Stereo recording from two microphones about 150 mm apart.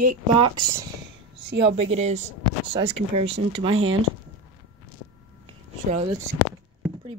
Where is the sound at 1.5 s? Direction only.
40° right (ahead or behind).